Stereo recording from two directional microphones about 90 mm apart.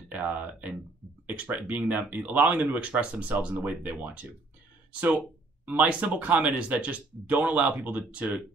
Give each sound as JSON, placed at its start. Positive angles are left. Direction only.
{"t": 0.1, "sound": "speech", "side_deg": -20}
{"t": 5.7, "sound": "speech", "side_deg": -15}